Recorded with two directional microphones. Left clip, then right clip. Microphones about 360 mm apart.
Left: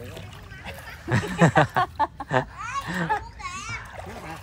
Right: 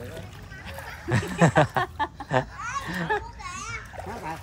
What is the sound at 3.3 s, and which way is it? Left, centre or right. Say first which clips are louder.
Children playing: left 2 dB; left.